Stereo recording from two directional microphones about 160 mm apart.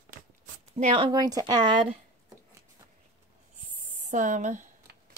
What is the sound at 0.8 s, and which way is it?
Speech, 35° right (ahead or behind).